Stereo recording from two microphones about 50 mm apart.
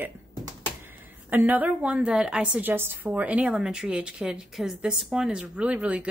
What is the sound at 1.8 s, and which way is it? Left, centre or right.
Speech, right.